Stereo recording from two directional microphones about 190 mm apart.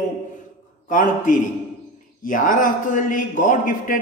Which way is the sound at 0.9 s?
45° left (ahead or behind).